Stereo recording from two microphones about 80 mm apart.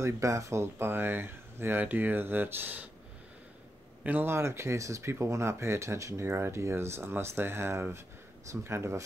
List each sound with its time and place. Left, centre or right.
0.0 s speech: right
4.0 s speech: right